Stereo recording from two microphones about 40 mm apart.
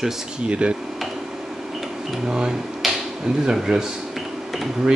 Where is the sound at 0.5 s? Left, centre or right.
Right.